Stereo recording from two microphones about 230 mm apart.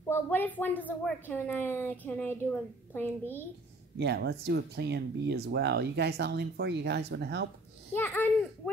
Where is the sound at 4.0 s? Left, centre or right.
Right.